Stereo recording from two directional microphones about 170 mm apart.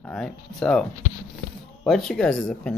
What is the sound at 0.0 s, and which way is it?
Speech, 5° left (ahead or behind).